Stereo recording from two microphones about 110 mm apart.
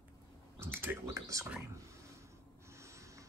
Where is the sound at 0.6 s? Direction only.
20° right (ahead or behind).